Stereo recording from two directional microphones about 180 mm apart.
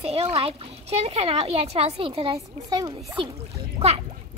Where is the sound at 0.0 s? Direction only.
35° right (ahead or behind).